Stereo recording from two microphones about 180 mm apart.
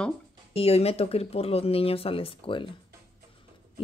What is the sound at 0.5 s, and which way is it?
Speech, 35° left (ahead or behind).